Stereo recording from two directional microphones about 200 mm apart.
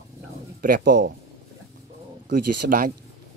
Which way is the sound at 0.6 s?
45° right (ahead or behind).